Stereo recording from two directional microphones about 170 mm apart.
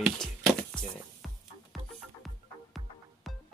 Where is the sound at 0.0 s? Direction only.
Centre (ahead or behind).